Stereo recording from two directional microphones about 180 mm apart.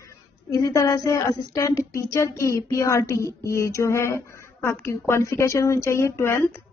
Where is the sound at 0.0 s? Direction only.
20° left (ahead or behind).